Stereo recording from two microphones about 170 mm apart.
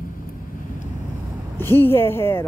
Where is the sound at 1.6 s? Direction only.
15° left (ahead or behind).